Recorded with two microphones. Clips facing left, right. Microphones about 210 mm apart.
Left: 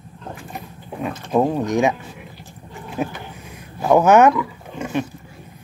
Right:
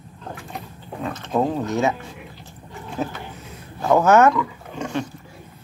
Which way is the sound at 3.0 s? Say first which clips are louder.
Left 2 dB; 15° left (ahead or behind).